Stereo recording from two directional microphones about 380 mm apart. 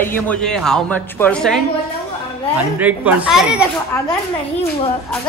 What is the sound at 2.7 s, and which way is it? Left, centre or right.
Speech, centre.